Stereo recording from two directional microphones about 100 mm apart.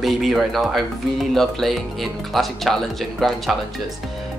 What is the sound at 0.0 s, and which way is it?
Speech, centre (ahead or behind).